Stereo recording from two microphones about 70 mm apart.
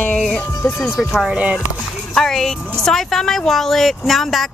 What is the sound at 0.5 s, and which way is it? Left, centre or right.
Speech, left.